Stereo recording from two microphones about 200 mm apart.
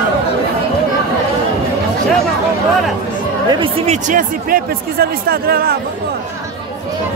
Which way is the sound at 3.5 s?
25° right (ahead or behind).